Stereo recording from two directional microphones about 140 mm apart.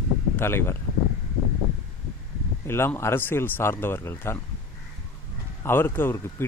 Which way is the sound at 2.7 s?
15° left (ahead or behind).